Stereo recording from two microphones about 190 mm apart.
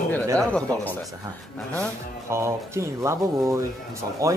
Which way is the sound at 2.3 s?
15° right (ahead or behind).